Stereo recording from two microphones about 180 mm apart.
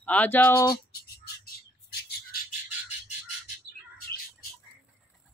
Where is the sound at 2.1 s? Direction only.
55° left (ahead or behind).